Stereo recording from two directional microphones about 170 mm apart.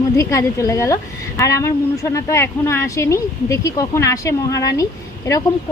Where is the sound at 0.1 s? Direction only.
15° left (ahead or behind).